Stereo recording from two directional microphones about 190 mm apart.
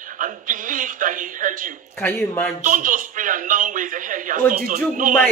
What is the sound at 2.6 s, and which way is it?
Speech, 45° right (ahead or behind).